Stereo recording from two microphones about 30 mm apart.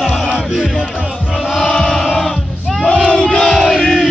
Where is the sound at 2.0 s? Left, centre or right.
Centre.